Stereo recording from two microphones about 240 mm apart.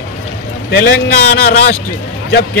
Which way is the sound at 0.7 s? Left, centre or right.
Left.